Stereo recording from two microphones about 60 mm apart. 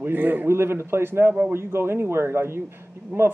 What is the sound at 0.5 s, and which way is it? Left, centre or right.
Speech, right.